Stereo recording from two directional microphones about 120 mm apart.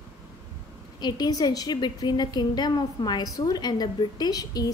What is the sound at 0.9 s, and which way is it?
A woman's voice, 35° left (ahead or behind).